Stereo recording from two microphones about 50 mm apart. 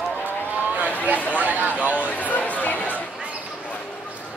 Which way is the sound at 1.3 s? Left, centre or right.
Right.